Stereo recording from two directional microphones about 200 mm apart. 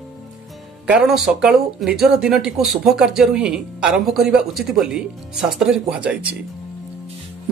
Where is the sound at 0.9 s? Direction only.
5° right (ahead or behind).